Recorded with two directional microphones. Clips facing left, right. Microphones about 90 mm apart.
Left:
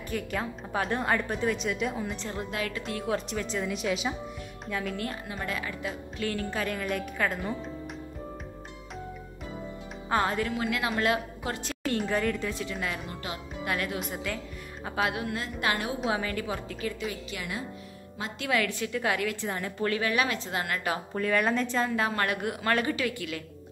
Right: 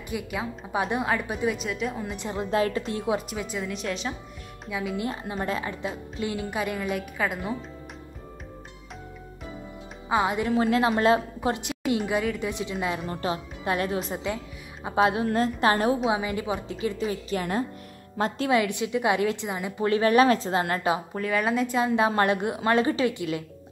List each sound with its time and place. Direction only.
0.1 s a woman's voice: 10° right (ahead or behind)
2.1 s a woman's voice: 20° right (ahead or behind)
2.5 s a woman's voice: 30° right (ahead or behind)
3.3 s a woman's voice: 5° right (ahead or behind)
4.9 s a woman's voice: 25° right (ahead or behind)
6.3 s a woman's voice: 15° right (ahead or behind)
10.0 s speech: 15° right (ahead or behind)
10.5 s a woman's voice: 30° right (ahead or behind)
16.1 s a woman's voice: 15° right (ahead or behind)
17.0 s a woman's voice: 35° right (ahead or behind)
18.4 s a woman's voice: 20° right (ahead or behind)
20.2 s a woman's voice: 40° right (ahead or behind)
21.1 s a woman's voice: 5° right (ahead or behind)
21.7 s a woman's voice: 20° right (ahead or behind)